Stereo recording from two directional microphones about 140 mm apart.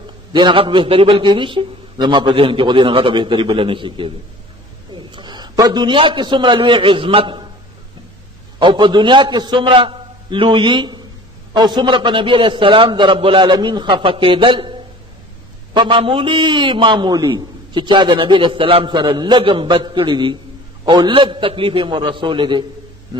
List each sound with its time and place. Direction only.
0.3 s a man's voice: 35° right (ahead or behind)
8.5 s a man's voice: 35° right (ahead or behind)